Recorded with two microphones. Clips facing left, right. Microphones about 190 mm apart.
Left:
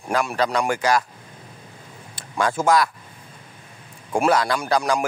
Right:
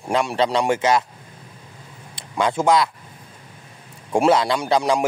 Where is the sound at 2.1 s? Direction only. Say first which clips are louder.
Right 1 dB; 20° right (ahead or behind).